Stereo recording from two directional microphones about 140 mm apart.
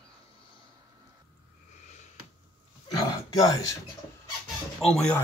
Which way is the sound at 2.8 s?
25° left (ahead or behind).